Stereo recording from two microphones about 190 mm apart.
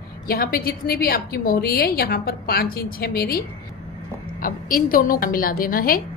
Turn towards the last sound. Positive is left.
turn(degrees=50)  # may be behind; listen again after turning